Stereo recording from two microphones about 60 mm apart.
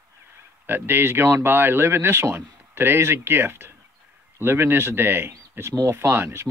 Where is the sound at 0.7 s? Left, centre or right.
Right.